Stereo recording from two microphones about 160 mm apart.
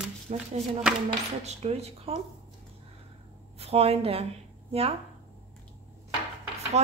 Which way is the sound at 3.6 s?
40° right (ahead or behind).